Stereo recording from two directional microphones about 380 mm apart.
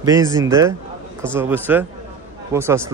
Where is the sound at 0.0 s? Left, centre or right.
Centre.